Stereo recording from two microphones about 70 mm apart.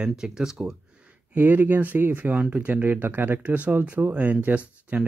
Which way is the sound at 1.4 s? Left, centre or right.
Right.